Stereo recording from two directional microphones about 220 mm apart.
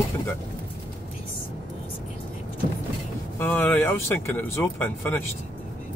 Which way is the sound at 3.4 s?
10° left (ahead or behind).